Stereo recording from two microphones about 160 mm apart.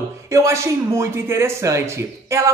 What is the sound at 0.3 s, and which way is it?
Speech, 20° right (ahead or behind).